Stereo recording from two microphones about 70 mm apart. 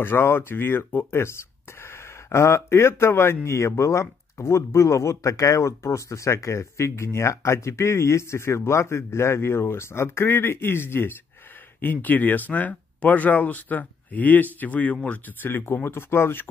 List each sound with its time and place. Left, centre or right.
0.0 s speech: left